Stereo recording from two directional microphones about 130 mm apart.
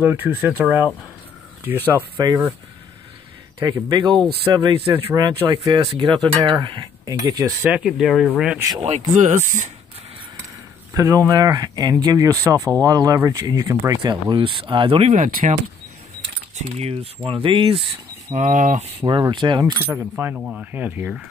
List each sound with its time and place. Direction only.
0.0 s speech: 15° right (ahead or behind)
2.1 s speech: 30° right (ahead or behind)
3.5 s speech: 35° right (ahead or behind)
7.6 s speech: 5° right (ahead or behind)
8.5 s speech: 30° right (ahead or behind)
8.8 s speech: 60° right (ahead or behind)
10.9 s speech: 25° right (ahead or behind)
14.3 s speech: 40° right (ahead or behind)
15.0 s speech: 85° right
16.5 s speech: 55° right (ahead or behind)
18.3 s speech: 75° right (ahead or behind)
18.9 s speech: 35° right (ahead or behind)
19.6 s speech: 20° right (ahead or behind)
20.3 s speech: 5° right (ahead or behind)